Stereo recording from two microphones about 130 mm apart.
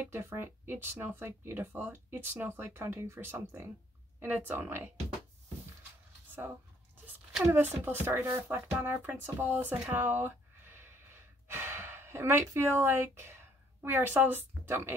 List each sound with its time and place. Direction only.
0.0 s speech: 20° right (ahead or behind)
7.4 s speech: 15° right (ahead or behind)
11.4 s gasp: 20° right (ahead or behind)
12.8 s speech: 20° right (ahead or behind)